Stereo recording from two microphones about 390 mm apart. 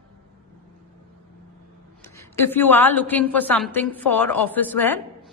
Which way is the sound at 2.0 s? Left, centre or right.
Centre.